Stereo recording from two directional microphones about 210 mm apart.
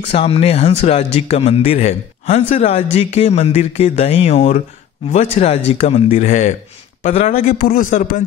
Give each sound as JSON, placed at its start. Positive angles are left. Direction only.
{"t": 0.0, "sound": "speech", "side_deg": 30}
{"t": 7.5, "sound": "speech", "side_deg": 45}